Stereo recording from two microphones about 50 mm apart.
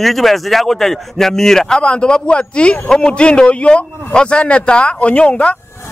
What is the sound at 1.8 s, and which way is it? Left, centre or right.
A man's voice, centre.